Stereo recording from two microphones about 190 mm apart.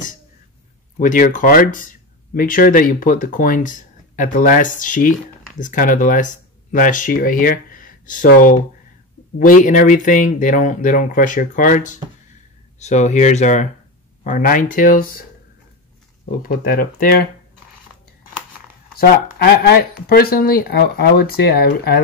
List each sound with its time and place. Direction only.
0.9 s speech: 45° left (ahead or behind)
16.4 s speech: 50° left (ahead or behind)
18.9 s speech: 55° left (ahead or behind)